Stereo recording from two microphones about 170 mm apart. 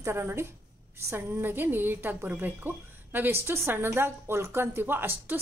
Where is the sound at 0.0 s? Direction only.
15° right (ahead or behind).